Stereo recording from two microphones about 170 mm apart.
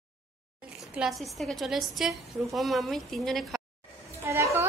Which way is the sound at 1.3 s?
Centre (ahead or behind).